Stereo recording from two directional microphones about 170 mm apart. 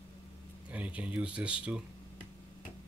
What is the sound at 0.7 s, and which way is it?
Speech, 10° right (ahead or behind).